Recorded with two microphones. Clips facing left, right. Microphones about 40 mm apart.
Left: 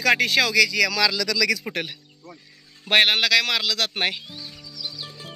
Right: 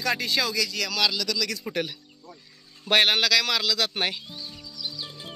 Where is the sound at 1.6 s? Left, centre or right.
Left.